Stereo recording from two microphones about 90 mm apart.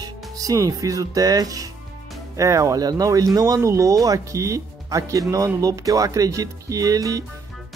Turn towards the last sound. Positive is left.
turn(degrees=-40)  # may be behind; listen again after turning